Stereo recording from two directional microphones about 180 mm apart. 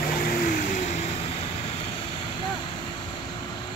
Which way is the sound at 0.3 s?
45° left (ahead or behind).